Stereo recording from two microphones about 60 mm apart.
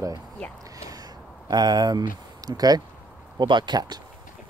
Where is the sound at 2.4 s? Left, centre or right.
Right.